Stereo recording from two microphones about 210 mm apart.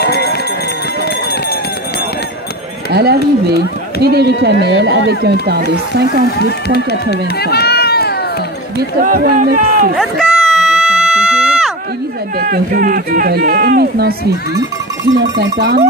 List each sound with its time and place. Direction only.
2.9 s speech: 50° right (ahead or behind)
6.7 s speech: 50° left (ahead or behind)
9.0 s speech: 40° right (ahead or behind)
9.9 s a sound: centre (ahead or behind)
12.4 s speech: 40° right (ahead or behind)
15.5 s speech: 45° right (ahead or behind)